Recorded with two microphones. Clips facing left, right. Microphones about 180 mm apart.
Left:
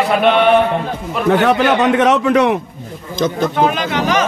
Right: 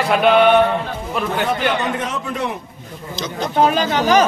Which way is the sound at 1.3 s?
75° left (ahead or behind).